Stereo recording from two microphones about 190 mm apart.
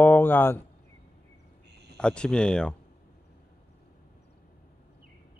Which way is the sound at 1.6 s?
60° right (ahead or behind).